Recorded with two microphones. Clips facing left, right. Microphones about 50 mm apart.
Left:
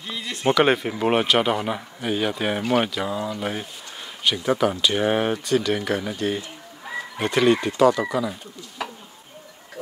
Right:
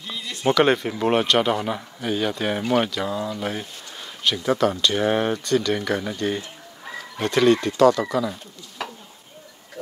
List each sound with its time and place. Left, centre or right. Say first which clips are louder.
0.0 s speech: left 1 dB; left
0.5 s a man's voice: even; centre